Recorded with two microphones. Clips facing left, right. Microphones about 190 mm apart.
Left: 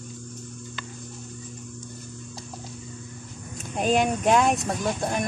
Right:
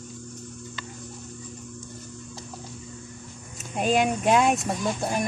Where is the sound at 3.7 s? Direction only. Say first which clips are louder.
Even; 5° right (ahead or behind).